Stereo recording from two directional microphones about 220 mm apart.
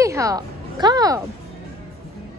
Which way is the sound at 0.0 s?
15° right (ahead or behind).